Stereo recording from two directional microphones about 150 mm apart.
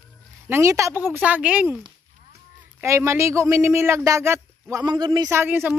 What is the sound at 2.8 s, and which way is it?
Speech, 20° right (ahead or behind).